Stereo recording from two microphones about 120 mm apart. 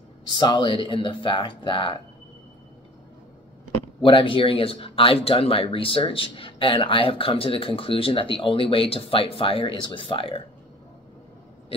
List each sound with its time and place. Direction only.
0.3 s speech: 40° left (ahead or behind)
4.0 s speech: 45° left (ahead or behind)